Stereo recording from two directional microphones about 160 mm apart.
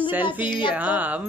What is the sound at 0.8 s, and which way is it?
Speech, 10° right (ahead or behind).